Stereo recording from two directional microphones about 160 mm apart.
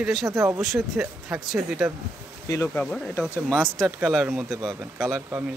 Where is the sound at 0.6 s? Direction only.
Centre (ahead or behind).